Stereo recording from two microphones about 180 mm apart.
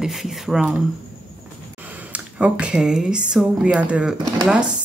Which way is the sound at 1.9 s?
10° right (ahead or behind).